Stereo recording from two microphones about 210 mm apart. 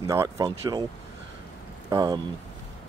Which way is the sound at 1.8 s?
20° right (ahead or behind).